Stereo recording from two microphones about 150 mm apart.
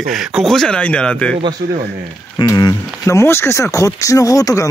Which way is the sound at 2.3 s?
25° left (ahead or behind).